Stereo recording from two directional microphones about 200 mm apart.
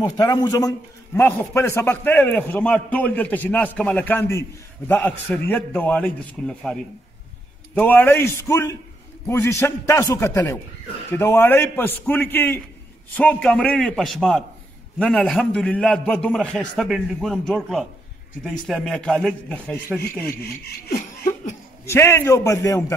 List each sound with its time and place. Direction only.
0.0 s a man's voice: 20° left (ahead or behind); by 19.8 s 5° left (ahead or behind)
20.0 s speech: 50° left (ahead or behind)
21.0 s laughter: 40° left (ahead or behind)
21.8 s a man's voice: 15° left (ahead or behind)